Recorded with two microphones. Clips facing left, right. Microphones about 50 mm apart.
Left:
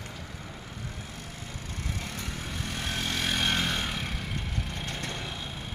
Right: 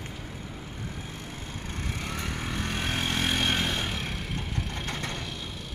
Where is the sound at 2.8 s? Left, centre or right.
Right.